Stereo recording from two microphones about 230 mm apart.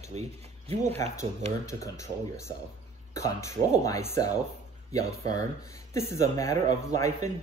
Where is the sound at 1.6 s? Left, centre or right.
Centre.